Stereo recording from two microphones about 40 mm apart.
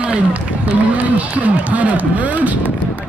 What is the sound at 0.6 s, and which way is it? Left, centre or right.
Speech, right.